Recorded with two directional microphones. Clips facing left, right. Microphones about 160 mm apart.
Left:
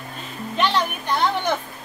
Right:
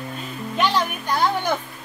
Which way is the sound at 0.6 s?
5° right (ahead or behind).